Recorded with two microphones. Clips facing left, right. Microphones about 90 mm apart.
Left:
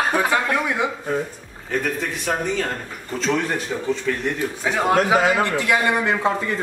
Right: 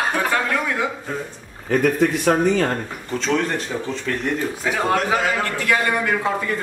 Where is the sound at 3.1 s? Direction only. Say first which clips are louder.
Right 1 dB; centre (ahead or behind).